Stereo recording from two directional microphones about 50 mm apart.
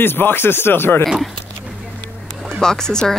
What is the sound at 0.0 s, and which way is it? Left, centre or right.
Speech, left.